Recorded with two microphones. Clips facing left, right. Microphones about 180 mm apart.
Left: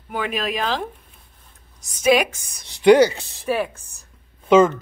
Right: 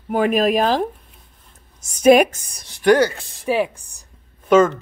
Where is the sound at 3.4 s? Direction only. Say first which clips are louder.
Right 3 dB; 15° right (ahead or behind).